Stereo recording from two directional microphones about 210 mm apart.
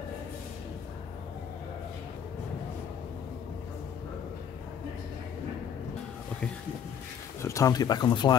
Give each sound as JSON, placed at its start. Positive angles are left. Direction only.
{"t": 7.4, "sound": "speech", "side_deg": 15}